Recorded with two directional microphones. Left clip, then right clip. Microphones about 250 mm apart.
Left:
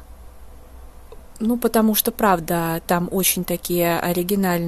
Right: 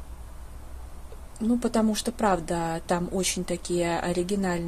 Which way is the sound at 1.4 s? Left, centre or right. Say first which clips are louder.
Left 6 dB; left.